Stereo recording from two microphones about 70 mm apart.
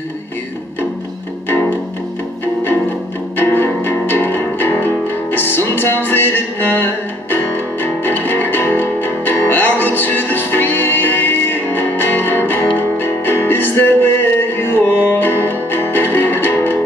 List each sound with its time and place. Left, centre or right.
1.5 s music: left
3.3 s music: left